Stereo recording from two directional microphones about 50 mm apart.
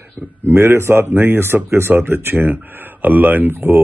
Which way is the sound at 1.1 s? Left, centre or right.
Right.